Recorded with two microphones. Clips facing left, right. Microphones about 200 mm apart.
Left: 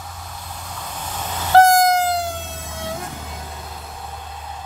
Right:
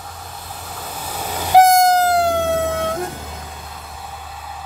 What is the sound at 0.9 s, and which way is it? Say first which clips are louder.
Train: right 3 dB; 10° right (ahead or behind).